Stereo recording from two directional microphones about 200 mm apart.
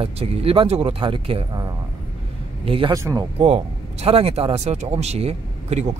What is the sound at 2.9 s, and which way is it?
Speech, 15° right (ahead or behind).